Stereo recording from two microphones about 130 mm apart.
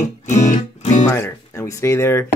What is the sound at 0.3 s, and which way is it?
Music, 65° left (ahead or behind).